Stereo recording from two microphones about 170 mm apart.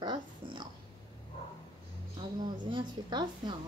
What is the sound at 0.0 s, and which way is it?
Dog, 25° right (ahead or behind).